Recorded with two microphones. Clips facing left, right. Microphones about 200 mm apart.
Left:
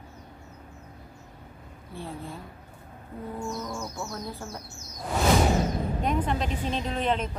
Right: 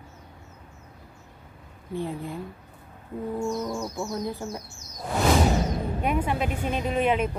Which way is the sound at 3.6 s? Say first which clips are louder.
Right 5 dB; 15° right (ahead or behind).